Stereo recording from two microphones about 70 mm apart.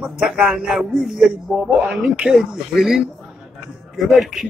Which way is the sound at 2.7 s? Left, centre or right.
Centre.